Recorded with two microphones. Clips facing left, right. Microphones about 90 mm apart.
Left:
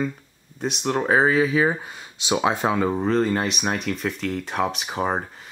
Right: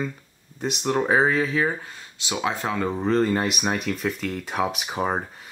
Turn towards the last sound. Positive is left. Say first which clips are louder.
# left 1 dB
turn(degrees=5)  # may be behind; listen again after turning